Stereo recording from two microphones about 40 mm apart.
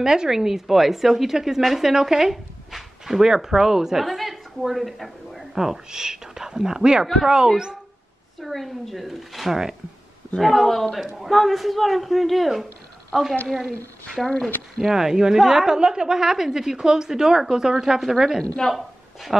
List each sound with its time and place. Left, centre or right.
0.0 s a woman's voice: centre
8.4 s a woman's voice: centre
18.4 s speech: centre